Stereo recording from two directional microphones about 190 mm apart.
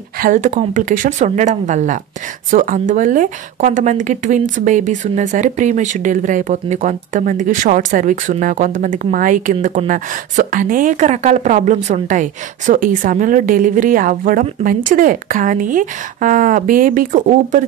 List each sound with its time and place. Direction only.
0.2 s speech: 40° right (ahead or behind)